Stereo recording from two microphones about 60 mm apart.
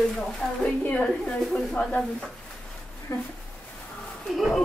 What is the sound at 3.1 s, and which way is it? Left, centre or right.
Speech, left.